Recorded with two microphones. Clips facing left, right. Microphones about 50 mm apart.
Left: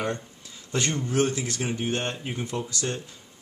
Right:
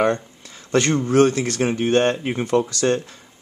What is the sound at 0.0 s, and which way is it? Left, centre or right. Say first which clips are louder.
Speech: right 10 dB; right.